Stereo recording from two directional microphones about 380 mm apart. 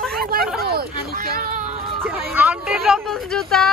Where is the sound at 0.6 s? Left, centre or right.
Right.